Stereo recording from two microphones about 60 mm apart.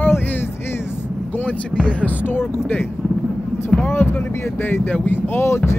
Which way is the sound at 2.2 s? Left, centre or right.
Left.